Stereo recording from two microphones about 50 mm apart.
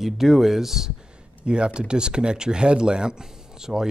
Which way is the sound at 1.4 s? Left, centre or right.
Centre.